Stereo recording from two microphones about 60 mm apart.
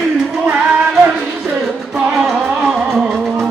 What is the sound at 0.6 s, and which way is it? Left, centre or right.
Music, centre.